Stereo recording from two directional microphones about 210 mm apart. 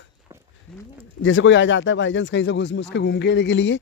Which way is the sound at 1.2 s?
65° left (ahead or behind).